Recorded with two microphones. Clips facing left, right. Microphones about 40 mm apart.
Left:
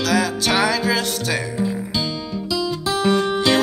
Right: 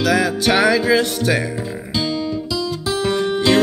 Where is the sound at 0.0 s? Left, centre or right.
Centre.